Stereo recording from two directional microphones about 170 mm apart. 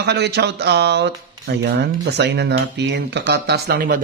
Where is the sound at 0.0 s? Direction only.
80° right.